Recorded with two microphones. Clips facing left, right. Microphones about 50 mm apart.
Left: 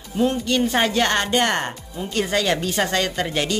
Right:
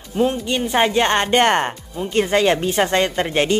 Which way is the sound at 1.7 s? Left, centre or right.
Centre.